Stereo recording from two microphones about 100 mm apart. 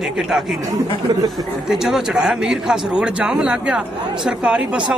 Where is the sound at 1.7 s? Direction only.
5° right (ahead or behind).